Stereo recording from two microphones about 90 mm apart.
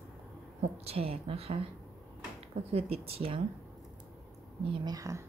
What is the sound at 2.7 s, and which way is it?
Speech, 90° right.